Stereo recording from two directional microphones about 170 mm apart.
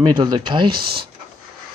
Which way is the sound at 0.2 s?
25° right (ahead or behind).